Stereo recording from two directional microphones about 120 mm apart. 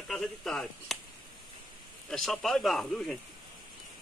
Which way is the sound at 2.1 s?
Centre (ahead or behind).